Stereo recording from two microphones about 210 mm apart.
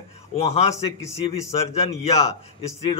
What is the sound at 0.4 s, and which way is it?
Speech, 30° left (ahead or behind).